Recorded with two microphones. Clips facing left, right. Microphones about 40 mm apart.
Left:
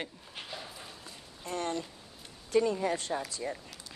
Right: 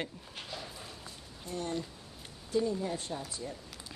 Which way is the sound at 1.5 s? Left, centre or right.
Left.